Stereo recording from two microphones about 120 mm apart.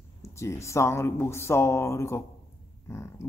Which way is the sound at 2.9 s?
20° left (ahead or behind).